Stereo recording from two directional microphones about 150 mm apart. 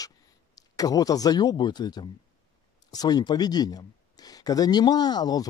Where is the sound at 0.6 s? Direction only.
25° left (ahead or behind).